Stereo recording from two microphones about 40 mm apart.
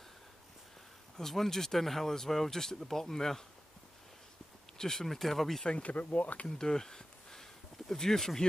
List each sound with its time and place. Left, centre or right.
1.1 s speech: centre
4.7 s speech: centre
5.8 s speech: left
6.6 s a sound: centre
7.9 s speech: centre